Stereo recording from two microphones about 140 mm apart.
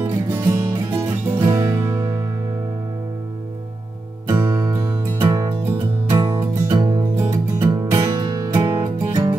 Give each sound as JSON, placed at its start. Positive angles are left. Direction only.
{"t": 0.0, "sound": "music", "side_deg": -20}
{"t": 4.3, "sound": "music", "side_deg": -20}